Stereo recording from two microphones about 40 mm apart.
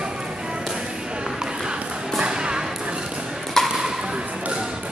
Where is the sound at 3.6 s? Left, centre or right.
Centre.